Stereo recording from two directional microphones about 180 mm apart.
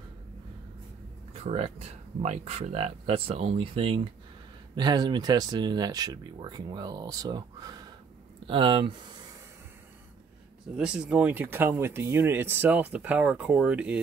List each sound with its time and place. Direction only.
1.3 s speech: 35° right (ahead or behind)
10.8 s speech: 5° right (ahead or behind)